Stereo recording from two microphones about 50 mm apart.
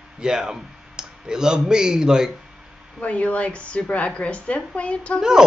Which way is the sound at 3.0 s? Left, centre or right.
Left.